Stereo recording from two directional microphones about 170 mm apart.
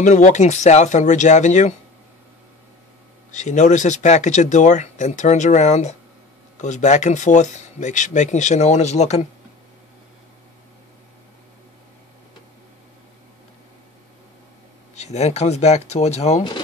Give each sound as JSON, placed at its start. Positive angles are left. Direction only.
{"t": 0.0, "sound": "speech", "side_deg": 45}
{"t": 3.3, "sound": "speech", "side_deg": 45}
{"t": 15.0, "sound": "speech", "side_deg": 40}